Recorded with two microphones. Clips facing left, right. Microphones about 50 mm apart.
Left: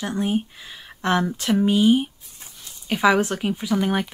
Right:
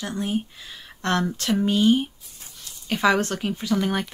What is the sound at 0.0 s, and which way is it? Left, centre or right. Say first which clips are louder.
Speech: left 3 dB; left.